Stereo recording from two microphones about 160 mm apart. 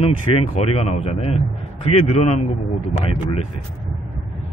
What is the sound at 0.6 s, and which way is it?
A man's voice, 40° left (ahead or behind).